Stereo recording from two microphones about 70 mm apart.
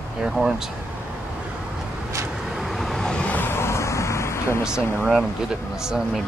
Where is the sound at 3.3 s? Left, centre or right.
Left.